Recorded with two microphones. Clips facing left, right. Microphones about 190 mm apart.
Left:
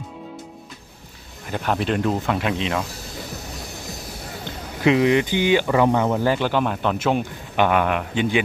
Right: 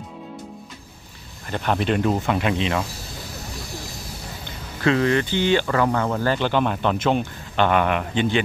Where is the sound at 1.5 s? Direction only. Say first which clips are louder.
Right 1 dB; centre (ahead or behind).